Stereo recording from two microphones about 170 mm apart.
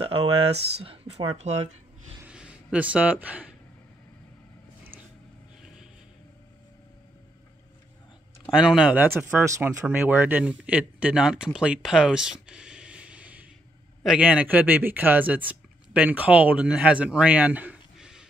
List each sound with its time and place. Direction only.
0.8 s speech: 40° right (ahead or behind)
2.2 s a sound: 5° right (ahead or behind)
8.5 s speech: 5° right (ahead or behind)